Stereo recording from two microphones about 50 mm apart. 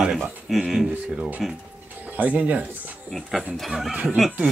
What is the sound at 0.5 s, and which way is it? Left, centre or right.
Speech, centre.